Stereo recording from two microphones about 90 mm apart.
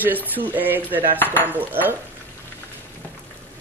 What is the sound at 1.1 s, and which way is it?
Speech, 20° left (ahead or behind).